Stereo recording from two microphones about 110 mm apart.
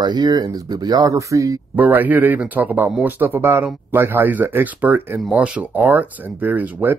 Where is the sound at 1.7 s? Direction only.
15° right (ahead or behind).